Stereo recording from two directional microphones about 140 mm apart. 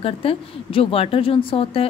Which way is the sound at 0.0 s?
40° left (ahead or behind).